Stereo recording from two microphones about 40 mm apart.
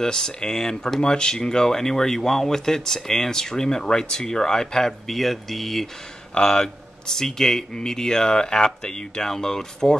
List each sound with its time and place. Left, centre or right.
0.0 s speech: centre
6.3 s speech: centre